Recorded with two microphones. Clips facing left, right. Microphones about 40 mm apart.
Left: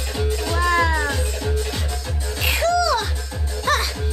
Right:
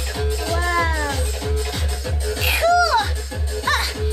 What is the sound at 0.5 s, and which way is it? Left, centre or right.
Music, left.